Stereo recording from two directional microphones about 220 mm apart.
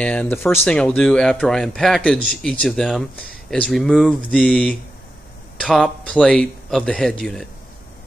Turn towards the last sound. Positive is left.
turn(degrees=5)  # may be behind; listen again after turning